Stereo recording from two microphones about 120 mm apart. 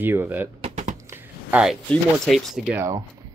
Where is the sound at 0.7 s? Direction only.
90° right.